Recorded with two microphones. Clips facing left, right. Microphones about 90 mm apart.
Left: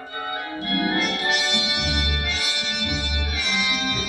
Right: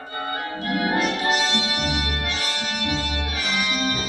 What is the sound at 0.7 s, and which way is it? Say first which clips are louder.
Music: right 1 dB; 10° right (ahead or behind).